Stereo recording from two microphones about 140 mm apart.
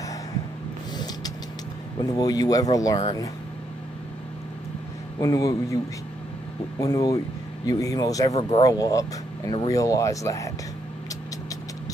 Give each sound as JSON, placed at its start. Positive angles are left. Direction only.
{"t": 2.0, "sound": "speech", "side_deg": 30}
{"t": 5.2, "sound": "speech", "side_deg": 25}
{"t": 6.8, "sound": "speech", "side_deg": 25}